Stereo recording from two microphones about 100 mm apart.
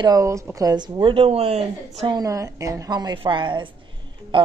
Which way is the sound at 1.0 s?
65° right (ahead or behind).